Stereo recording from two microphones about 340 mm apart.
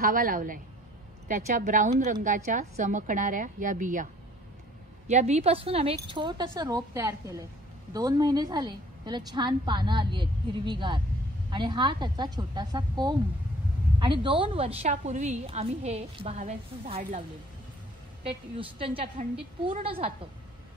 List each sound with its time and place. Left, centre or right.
0.0 s a woman's voice: right
18.6 s a woman's voice: centre